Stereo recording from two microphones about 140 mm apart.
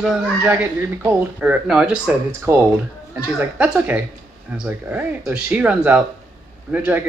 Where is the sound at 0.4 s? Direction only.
10° right (ahead or behind).